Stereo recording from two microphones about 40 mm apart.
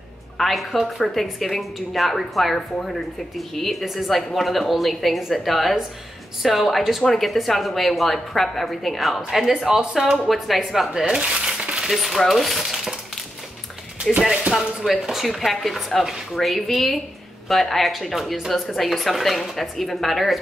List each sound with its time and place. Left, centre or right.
0.4 s a woman's voice: centre
3.8 s a woman's voice: centre
9.5 s speech: centre
10.2 s a woman's voice: centre
10.9 s speech: centre
11.8 s speech: centre
12.3 s a sound: centre
14.8 s speech: centre
15.2 s a woman's voice: centre